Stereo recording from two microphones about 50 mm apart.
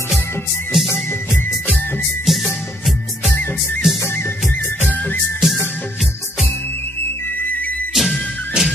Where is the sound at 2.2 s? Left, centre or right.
Centre.